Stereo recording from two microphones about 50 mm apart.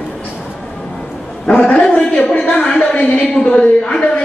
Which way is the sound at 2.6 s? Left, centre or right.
Centre.